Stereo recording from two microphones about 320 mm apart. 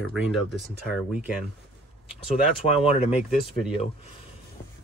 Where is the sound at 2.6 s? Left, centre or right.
Left.